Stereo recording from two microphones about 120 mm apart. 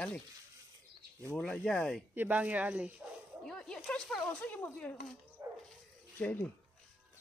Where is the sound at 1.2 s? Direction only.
10° left (ahead or behind).